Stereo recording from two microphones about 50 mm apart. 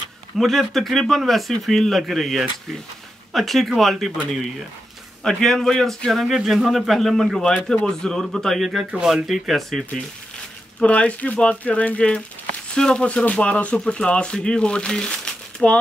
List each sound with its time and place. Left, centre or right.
0.4 s a man's voice: centre
5.2 s speech: centre
6.1 s a man's voice: centre
7.4 s speech: centre
9.0 s a man's voice: centre
10.8 s speech: left
12.7 s speech: centre
13.0 s speech: left; by 15.8 s centre